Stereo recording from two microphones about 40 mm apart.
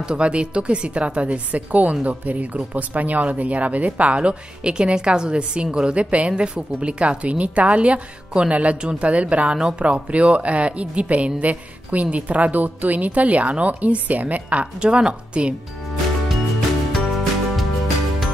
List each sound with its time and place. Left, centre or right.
0.1 s a woman's voice: right
14.8 s a woman's voice: right
16.9 s music: centre